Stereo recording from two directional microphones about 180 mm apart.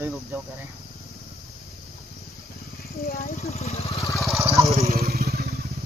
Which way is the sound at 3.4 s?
35° left (ahead or behind).